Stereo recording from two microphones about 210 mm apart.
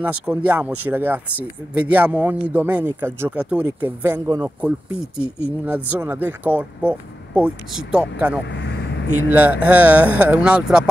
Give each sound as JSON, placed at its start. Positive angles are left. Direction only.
{"t": 0.0, "sound": "speech", "side_deg": -5}
{"t": 8.5, "sound": "speech", "side_deg": 55}
{"t": 9.3, "sound": "speech", "side_deg": -10}